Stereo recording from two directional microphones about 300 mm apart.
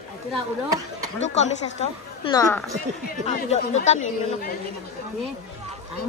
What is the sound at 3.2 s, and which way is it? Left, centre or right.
Speech, left.